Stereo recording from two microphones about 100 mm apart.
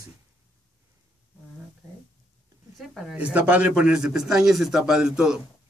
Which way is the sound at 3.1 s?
15° right (ahead or behind).